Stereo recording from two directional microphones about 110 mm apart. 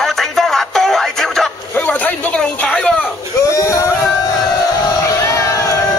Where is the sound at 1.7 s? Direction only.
15° left (ahead or behind).